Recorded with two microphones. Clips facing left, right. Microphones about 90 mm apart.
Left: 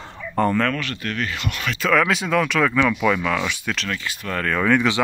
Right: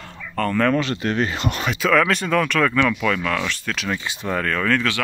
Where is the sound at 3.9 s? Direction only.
15° right (ahead or behind).